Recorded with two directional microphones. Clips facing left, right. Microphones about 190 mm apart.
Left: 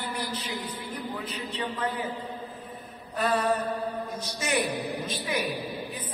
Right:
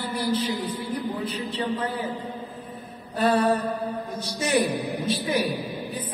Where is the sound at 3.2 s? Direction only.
35° right (ahead or behind).